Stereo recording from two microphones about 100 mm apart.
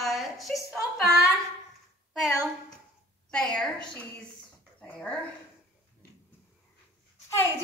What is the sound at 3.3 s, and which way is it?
Speech, 5° left (ahead or behind).